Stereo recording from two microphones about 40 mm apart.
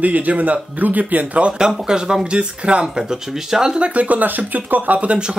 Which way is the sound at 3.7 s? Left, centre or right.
Right.